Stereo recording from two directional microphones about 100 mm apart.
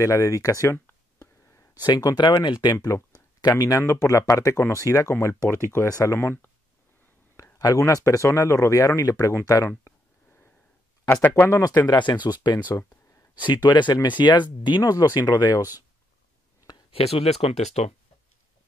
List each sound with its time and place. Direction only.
0.0 s a sound: 30° left (ahead or behind)
1.8 s speech: 40° left (ahead or behind)
5.9 s speech: 35° left (ahead or behind)
6.1 s speech: 25° left (ahead or behind)
7.5 s speech: 30° left (ahead or behind)
9.7 s a sound: 20° left (ahead or behind)
11.2 s speech: 25° left (ahead or behind)
11.9 s speech: 45° left (ahead or behind)
12.7 s a sound: 35° left (ahead or behind)
13.4 s speech: 50° left (ahead or behind)
14.8 s speech: 35° left (ahead or behind)
16.9 s speech: 85° left